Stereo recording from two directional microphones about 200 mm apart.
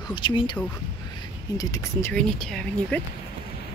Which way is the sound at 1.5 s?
15° left (ahead or behind).